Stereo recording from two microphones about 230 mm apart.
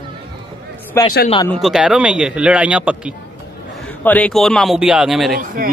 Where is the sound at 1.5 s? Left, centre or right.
Centre.